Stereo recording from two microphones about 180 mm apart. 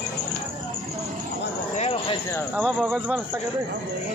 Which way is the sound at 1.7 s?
35° left (ahead or behind).